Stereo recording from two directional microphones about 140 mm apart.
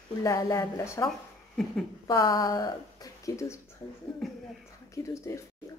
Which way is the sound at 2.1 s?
25° left (ahead or behind).